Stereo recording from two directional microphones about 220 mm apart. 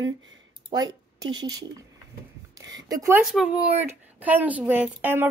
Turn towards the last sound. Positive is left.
turn(degrees=-10)  # may be behind; listen again after turning